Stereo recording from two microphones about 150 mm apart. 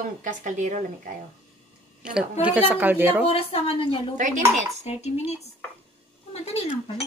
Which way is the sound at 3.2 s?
40° left (ahead or behind).